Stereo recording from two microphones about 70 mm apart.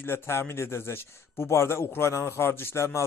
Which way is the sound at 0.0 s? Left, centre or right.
Left.